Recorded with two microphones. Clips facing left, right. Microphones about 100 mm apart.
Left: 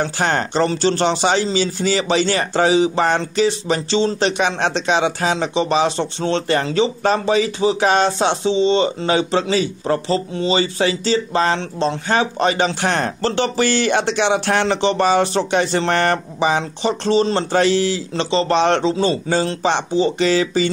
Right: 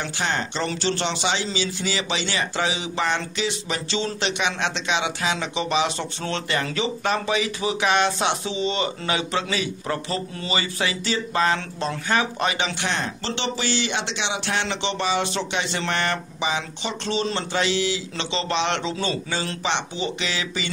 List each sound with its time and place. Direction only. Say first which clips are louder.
0.0 s speech: left 7 dB; 50° left (ahead or behind)